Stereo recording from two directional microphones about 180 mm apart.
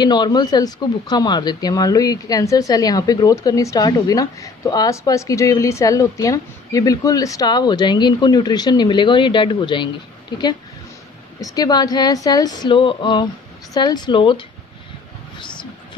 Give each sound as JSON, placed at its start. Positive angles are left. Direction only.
{"t": 0.0, "sound": "speech", "side_deg": 25}
{"t": 11.4, "sound": "speech", "side_deg": 20}